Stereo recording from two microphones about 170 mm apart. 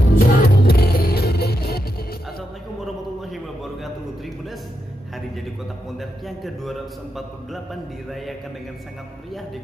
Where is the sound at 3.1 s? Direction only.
Centre (ahead or behind).